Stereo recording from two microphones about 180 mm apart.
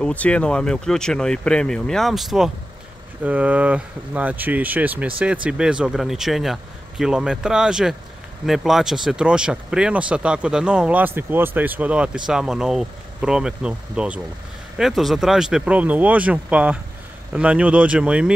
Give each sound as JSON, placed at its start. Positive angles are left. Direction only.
{"t": 0.0, "sound": "speech", "side_deg": 5}